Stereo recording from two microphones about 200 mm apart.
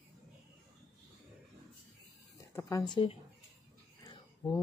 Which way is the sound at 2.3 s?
15° left (ahead or behind).